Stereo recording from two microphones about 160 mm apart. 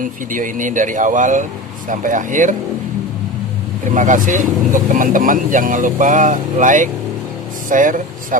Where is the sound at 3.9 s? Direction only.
55° right (ahead or behind).